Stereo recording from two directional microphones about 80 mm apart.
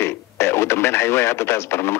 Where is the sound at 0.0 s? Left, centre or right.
Left.